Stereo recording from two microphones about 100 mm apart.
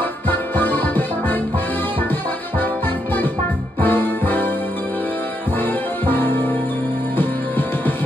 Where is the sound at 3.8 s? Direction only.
20° left (ahead or behind).